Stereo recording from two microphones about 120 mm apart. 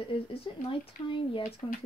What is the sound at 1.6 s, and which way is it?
Speech, 35° left (ahead or behind).